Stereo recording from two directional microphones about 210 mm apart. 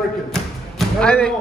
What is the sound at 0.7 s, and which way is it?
Music, 5° left (ahead or behind).